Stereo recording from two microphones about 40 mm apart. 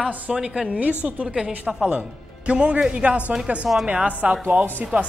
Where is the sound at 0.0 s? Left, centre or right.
Centre.